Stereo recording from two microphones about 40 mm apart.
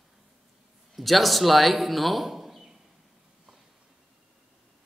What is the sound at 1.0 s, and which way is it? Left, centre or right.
A man's voice, centre.